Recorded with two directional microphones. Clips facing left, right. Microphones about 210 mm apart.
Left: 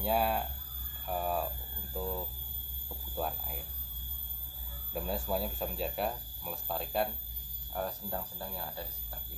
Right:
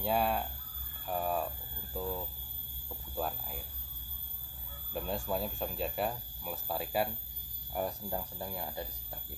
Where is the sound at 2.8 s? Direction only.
Centre (ahead or behind).